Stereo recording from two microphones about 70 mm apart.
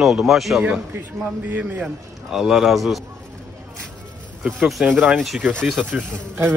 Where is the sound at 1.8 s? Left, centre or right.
Centre.